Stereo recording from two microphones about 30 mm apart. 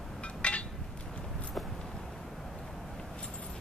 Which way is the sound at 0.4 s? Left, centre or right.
Left.